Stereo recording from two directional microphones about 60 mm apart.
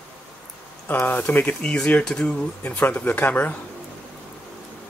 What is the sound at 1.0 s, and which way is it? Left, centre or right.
Speech, left.